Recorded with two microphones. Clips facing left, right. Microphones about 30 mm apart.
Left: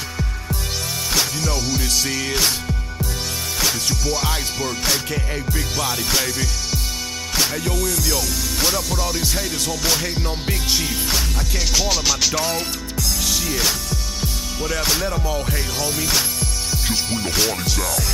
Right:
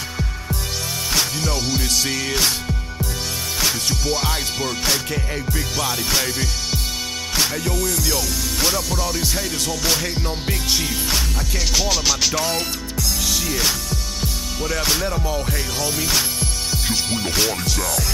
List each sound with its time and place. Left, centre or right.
1.8 s music: centre
3.9 s music: right
4.2 s music: centre
13.2 s speech: centre
14.2 s music: centre